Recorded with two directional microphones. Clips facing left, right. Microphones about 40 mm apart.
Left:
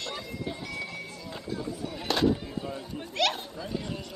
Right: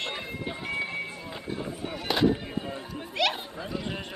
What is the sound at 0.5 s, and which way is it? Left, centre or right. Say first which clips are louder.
Music: right 6 dB; right.